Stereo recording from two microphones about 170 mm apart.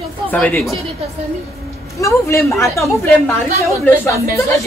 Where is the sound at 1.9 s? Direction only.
15° left (ahead or behind).